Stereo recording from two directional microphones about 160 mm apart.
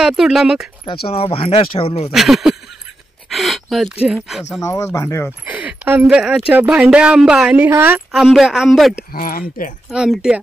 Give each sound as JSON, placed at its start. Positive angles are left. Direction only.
{"t": 0.0, "sound": "a woman's voice", "side_deg": 0}
{"t": 1.0, "sound": "speech", "side_deg": 35}
{"t": 2.0, "sound": "a woman's voice", "side_deg": 0}
{"t": 3.3, "sound": "gasp", "side_deg": 0}
{"t": 4.0, "sound": "a woman's voice", "side_deg": -5}
{"t": 4.6, "sound": "speech", "side_deg": 20}
{"t": 5.4, "sound": "a woman's voice", "side_deg": -10}
{"t": 9.1, "sound": "speech", "side_deg": 65}
{"t": 9.8, "sound": "a woman's voice", "side_deg": 0}